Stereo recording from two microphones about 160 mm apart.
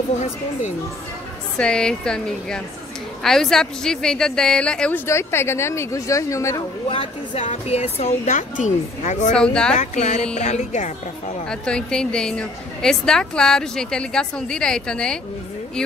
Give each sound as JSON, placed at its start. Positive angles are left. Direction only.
{"t": 1.6, "sound": "a woman's voice", "side_deg": 5}
{"t": 6.9, "sound": "a woman's voice", "side_deg": 40}
{"t": 9.3, "sound": "a woman's voice", "side_deg": 5}
{"t": 9.8, "sound": "a woman's voice", "side_deg": 45}
{"t": 11.4, "sound": "a woman's voice", "side_deg": 5}